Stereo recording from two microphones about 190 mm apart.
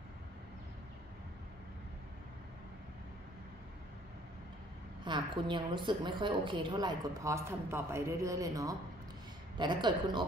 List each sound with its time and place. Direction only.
5.0 s a woman's voice: 25° right (ahead or behind)